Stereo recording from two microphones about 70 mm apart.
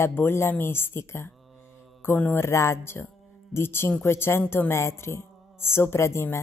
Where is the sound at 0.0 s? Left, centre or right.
Left.